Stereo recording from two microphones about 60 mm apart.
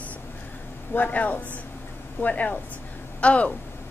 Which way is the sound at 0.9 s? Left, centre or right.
Left.